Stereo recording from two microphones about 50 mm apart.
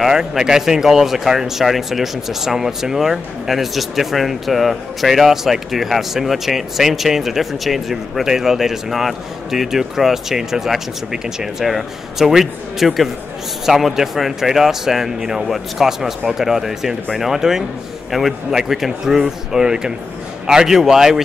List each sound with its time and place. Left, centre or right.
0.0 s speech: centre